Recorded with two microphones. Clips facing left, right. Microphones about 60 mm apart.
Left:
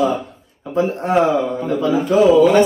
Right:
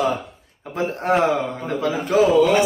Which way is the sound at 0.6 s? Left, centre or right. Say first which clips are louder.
Left 4 dB; right.